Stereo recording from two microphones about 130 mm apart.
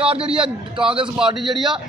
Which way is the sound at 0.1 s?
45° right (ahead or behind).